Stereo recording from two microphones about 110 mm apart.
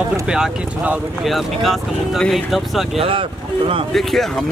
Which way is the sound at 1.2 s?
Centre (ahead or behind).